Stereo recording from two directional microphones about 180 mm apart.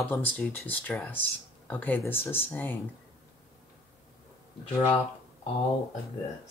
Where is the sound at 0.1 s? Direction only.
10° left (ahead or behind).